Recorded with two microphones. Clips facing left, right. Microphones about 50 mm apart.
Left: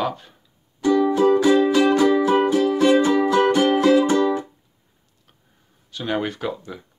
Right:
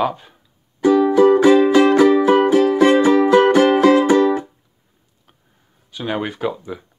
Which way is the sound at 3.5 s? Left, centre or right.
Right.